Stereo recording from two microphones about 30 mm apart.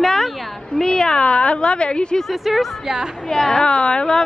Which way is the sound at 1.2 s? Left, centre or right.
Left.